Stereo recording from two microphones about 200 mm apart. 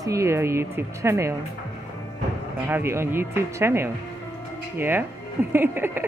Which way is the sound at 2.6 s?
10° right (ahead or behind).